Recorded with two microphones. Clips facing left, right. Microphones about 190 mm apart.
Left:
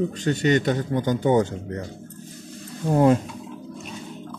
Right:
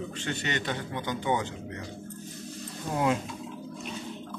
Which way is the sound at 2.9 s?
40° left (ahead or behind).